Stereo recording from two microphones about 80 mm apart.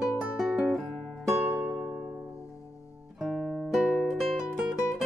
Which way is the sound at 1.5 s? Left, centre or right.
Centre.